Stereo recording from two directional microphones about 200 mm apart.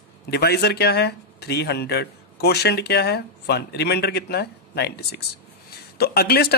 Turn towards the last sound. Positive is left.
turn(degrees=50)  # may be behind; listen again after turning